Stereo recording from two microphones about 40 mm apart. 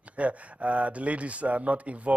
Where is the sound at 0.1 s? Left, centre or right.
Right.